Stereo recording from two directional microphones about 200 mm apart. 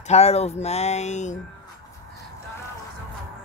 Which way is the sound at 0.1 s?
30° left (ahead or behind).